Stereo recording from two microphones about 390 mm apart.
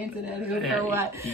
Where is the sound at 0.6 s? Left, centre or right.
Centre.